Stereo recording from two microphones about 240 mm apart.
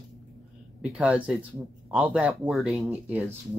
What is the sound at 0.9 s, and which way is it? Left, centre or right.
Speech, centre.